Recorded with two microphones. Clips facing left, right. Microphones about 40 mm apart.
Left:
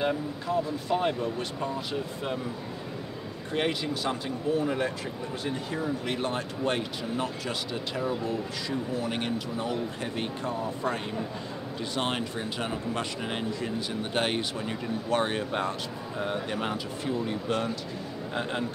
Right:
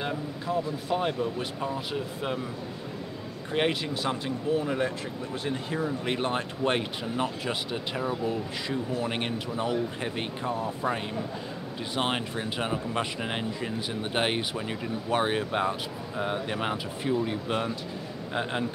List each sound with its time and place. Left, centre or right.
0.0 s speech: centre
3.5 s speech: centre
6.0 s speech: right
10.5 s speech: centre
11.8 s speech: centre